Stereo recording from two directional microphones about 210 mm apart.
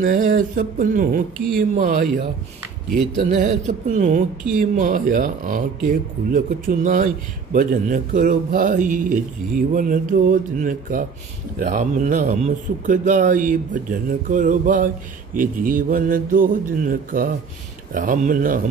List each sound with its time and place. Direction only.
0.0 s a man's voice: 40° right (ahead or behind)
3.3 s a man's voice: 35° right (ahead or behind)